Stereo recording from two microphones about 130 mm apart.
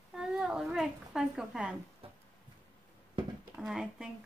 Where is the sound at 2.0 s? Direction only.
45° right (ahead or behind).